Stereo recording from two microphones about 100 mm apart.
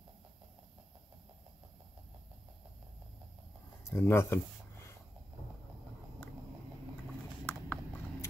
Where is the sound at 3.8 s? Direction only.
25° left (ahead or behind).